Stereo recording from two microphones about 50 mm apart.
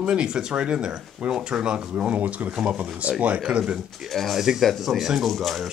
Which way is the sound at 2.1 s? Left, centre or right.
Right.